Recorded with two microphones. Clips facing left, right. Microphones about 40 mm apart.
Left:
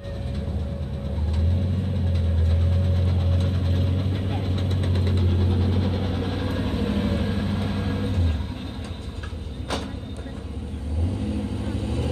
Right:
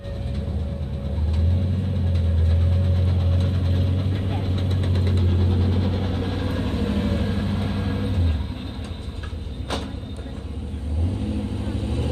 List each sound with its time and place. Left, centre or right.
2.7 s vehicle: centre
11.1 s vehicle: right